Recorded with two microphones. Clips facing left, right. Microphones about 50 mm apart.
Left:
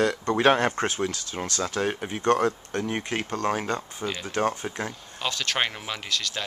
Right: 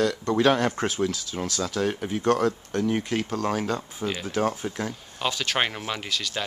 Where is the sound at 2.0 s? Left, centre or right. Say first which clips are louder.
Left 1 dB; centre.